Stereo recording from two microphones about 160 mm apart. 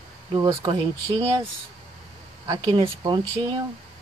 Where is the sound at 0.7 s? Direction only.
35° right (ahead or behind).